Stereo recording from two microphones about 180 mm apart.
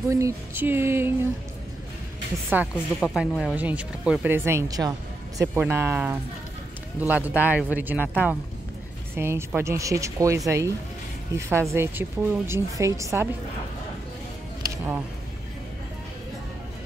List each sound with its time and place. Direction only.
0.1 s a woman's voice: 15° right (ahead or behind)
2.5 s a woman's voice: 10° right (ahead or behind)
3.0 s a woman's voice: centre (ahead or behind); by 13.3 s 15° right (ahead or behind)